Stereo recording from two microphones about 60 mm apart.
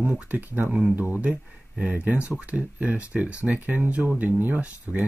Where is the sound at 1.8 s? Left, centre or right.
Right.